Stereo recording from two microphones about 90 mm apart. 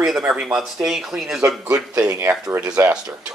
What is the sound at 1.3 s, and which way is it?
Speech, 35° right (ahead or behind).